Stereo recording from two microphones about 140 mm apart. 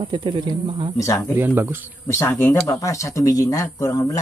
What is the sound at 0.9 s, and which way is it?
Speech, 25° left (ahead or behind).